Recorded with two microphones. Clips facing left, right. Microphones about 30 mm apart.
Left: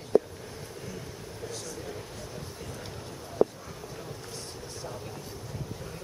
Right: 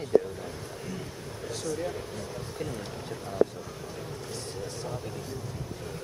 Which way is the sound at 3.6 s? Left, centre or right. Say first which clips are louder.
Right 2 dB; centre.